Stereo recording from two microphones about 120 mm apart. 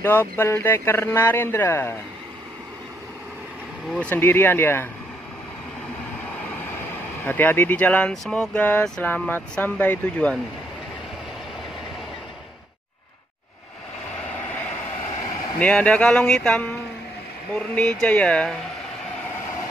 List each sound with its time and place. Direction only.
0.0 s speech: 15° left (ahead or behind)
4.0 s speech: 15° left (ahead or behind)
7.2 s speech: 15° left (ahead or behind)
15.6 s speech: 10° left (ahead or behind)